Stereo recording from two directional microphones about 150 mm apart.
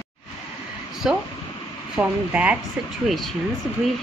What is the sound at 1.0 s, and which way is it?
Speech, 5° right (ahead or behind).